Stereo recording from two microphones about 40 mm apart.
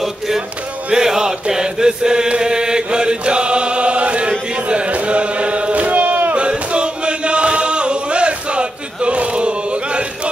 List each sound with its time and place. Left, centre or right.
0.9 s chant: centre; by 4.3 s right
4.6 s a sound: right
6.3 s chant: right